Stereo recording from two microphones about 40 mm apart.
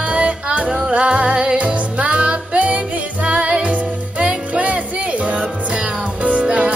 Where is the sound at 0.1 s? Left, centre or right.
Right.